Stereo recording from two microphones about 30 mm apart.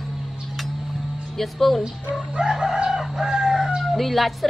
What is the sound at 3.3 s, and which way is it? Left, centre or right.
Crowing, centre.